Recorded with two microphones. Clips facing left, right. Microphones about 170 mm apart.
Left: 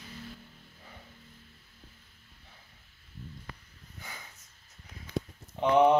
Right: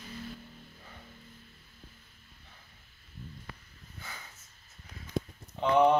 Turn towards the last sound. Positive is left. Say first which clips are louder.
# left 1 dB
turn(degrees=15)  # may be behind; listen again after turning